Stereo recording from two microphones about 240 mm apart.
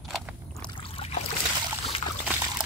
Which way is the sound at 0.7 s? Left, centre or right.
Left.